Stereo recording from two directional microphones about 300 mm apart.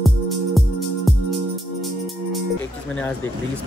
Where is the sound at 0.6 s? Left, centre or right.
Centre.